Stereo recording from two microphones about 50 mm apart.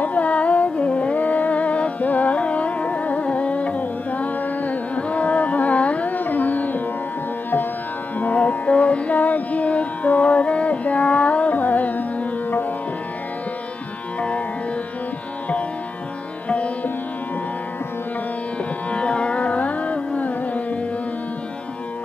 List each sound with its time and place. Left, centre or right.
0.0 s music: left
8.2 s music: left
16.4 s music: left
18.9 s music: left